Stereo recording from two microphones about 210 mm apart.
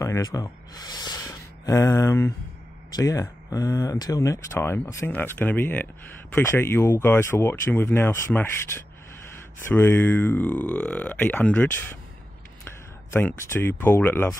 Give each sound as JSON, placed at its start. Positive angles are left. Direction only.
{"t": 0.0, "sound": "speech", "side_deg": 15}